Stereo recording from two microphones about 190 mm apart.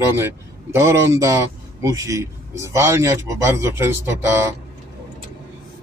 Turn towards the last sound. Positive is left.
turn(degrees=-15)  # may be behind; listen again after turning